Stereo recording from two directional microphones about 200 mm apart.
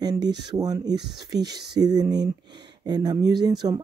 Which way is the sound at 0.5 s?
20° right (ahead or behind).